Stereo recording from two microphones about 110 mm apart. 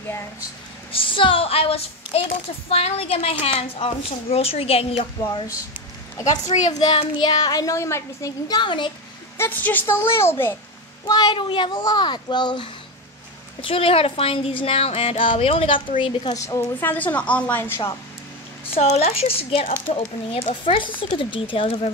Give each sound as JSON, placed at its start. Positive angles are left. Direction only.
{"t": 0.9, "sound": "speech", "side_deg": 55}
{"t": 6.5, "sound": "speech", "side_deg": 65}
{"t": 7.2, "sound": "a child's voice", "side_deg": 40}
{"t": 8.5, "sound": "speech", "side_deg": 45}
{"t": 9.4, "sound": "a woman's voice", "side_deg": 15}
{"t": 11.1, "sound": "speech", "side_deg": 40}
{"t": 13.6, "sound": "speech", "side_deg": 55}
{"t": 16.3, "sound": "a woman's voice", "side_deg": 30}
{"t": 16.8, "sound": "a woman's voice", "side_deg": 15}
{"t": 18.7, "sound": "speech", "side_deg": 70}